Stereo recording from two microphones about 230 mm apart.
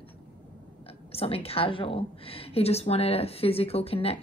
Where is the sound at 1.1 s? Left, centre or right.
Left.